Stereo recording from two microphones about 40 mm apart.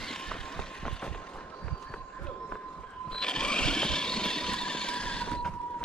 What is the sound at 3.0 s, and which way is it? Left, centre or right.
Vehicle, centre.